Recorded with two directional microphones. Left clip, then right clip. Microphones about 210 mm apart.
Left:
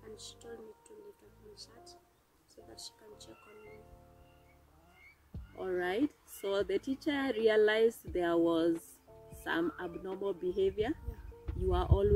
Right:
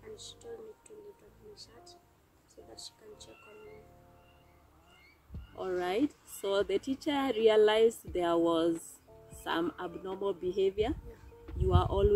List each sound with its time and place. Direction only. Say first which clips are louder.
0.1 s speech: right 2 dB; 15° left (ahead or behind)
1.5 s speech: even; 15° left (ahead or behind)
5.6 s speech: right 2 dB; 15° right (ahead or behind)